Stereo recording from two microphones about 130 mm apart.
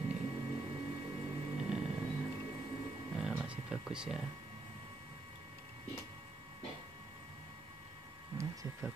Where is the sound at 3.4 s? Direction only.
5° right (ahead or behind).